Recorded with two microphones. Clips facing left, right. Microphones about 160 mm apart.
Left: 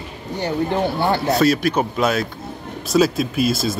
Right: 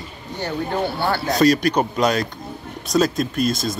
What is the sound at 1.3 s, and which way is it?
Speech, 5° left (ahead or behind).